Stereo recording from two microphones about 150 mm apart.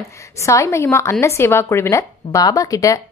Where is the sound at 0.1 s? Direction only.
20° left (ahead or behind).